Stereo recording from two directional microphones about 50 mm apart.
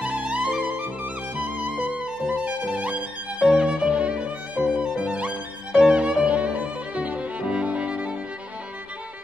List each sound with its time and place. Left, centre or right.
0.0 s music: right
3.9 s violin: right